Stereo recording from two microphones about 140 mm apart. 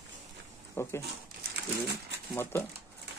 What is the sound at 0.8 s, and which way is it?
Speech, 20° left (ahead or behind).